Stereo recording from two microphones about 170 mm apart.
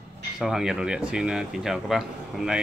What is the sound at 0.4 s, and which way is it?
Speech, 5° right (ahead or behind).